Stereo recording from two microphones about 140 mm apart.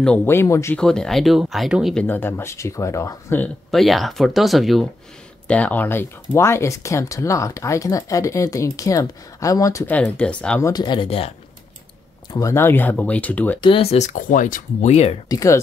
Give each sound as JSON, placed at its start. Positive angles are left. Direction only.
{"t": 0.0, "sound": "speech", "side_deg": 10}
{"t": 0.7, "sound": "speech", "side_deg": 5}
{"t": 2.0, "sound": "speech", "side_deg": 15}
{"t": 3.7, "sound": "speech", "side_deg": 0}
{"t": 5.5, "sound": "speech", "side_deg": 10}
{"t": 9.9, "sound": "speech", "side_deg": 10}
{"t": 10.6, "sound": "speech", "side_deg": 30}
{"t": 12.4, "sound": "speech", "side_deg": 20}
{"t": 13.6, "sound": "speech", "side_deg": 40}
{"t": 15.2, "sound": "speech", "side_deg": 25}